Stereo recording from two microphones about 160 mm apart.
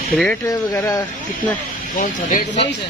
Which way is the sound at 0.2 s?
10° left (ahead or behind).